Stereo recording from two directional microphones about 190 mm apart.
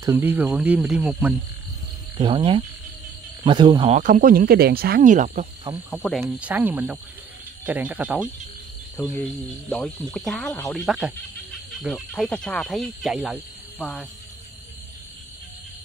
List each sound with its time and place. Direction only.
0.0 s speech: 10° right (ahead or behind)
2.1 s speech: 25° right (ahead or behind)
3.9 s speech: 40° right (ahead or behind)
5.9 s speech: centre (ahead or behind)
6.2 s speech: 10° right (ahead or behind)
9.0 s cricket: 10° left (ahead or behind)
9.7 s speech: 5° left (ahead or behind)